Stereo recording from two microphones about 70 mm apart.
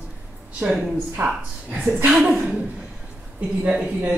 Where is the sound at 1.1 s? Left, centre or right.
Right.